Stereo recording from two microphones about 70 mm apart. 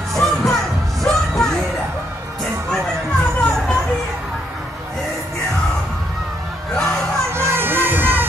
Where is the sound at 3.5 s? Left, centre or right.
Centre.